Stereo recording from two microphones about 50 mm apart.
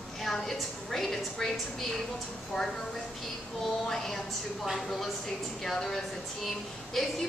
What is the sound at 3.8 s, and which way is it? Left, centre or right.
A woman's voice, centre.